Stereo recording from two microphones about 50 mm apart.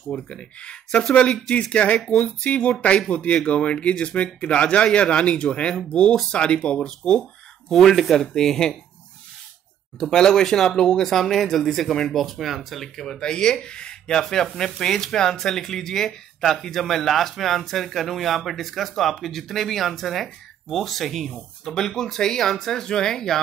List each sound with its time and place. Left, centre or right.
0.1 s speech: left
7.7 s speech: centre
9.9 s speech: centre